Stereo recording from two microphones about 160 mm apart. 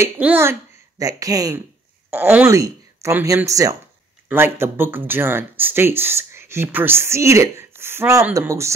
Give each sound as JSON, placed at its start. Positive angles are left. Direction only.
{"t": 0.0, "sound": "a child's voice", "side_deg": -15}